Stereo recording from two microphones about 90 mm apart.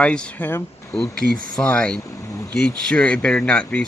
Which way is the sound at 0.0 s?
10° left (ahead or behind).